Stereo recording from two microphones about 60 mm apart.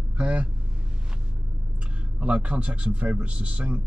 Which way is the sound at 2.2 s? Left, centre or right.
Right.